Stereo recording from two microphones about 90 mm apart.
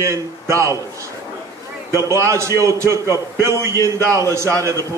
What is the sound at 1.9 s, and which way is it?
A man's voice, 35° right (ahead or behind).